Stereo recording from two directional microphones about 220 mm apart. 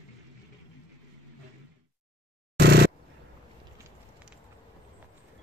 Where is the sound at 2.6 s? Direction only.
45° right (ahead or behind).